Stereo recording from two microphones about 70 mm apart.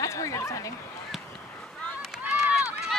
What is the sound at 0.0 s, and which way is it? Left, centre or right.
Speech, left.